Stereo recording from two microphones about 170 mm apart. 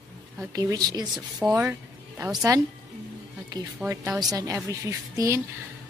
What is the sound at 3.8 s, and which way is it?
Speech, 15° right (ahead or behind).